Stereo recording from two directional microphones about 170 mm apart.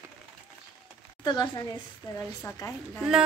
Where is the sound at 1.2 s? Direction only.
25° left (ahead or behind).